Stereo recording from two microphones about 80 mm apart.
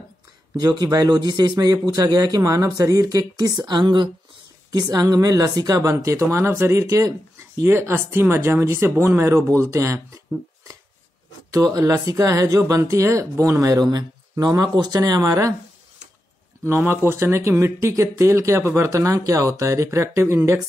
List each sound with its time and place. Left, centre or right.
0.6 s a man's voice: right
3.6 s speech: right
4.7 s speech: right
6.9 s speech: right
7.6 s speech: right
11.5 s speech: right
16.6 s speech: right